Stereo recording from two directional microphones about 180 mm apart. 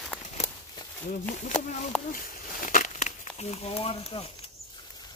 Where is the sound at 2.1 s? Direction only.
50° left (ahead or behind); by 4.5 s 30° left (ahead or behind).